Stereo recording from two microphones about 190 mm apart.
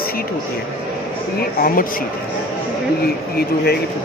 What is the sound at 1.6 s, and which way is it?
Speech, 50° left (ahead or behind).